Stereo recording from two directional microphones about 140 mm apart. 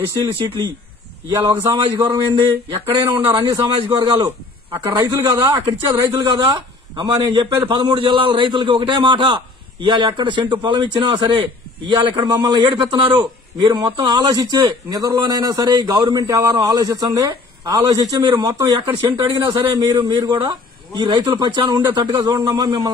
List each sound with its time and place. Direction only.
1.3 s a man's voice: 35° right (ahead or behind)
18.5 s a man's voice: 25° right (ahead or behind)